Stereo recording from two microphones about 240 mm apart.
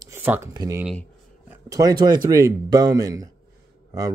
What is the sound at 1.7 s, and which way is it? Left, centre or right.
Speech, centre.